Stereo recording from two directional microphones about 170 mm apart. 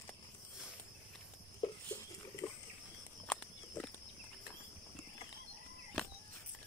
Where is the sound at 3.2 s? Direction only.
10° left (ahead or behind).